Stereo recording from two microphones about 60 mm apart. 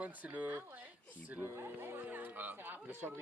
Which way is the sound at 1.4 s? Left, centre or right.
Right.